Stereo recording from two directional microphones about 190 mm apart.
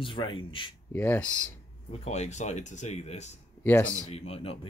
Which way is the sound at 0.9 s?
10° left (ahead or behind).